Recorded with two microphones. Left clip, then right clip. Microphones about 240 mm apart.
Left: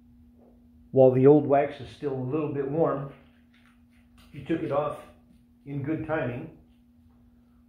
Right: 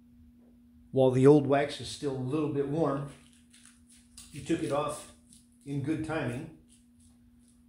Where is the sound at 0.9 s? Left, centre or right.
Centre.